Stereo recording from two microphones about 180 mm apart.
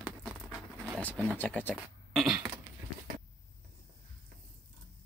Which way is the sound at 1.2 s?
10° left (ahead or behind).